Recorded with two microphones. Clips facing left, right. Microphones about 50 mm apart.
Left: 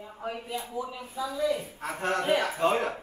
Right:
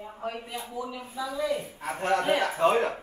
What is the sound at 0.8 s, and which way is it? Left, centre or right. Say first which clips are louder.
Speech: even; centre.